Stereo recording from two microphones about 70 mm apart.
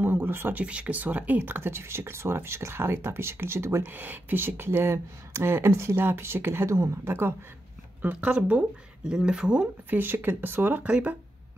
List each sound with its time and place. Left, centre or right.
0.0 s a sound: right
0.7 s speech: centre; by 7.3 s right
8.0 s speech: centre
9.8 s speech: right